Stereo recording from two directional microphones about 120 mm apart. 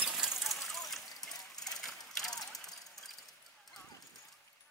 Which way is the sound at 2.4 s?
5° left (ahead or behind).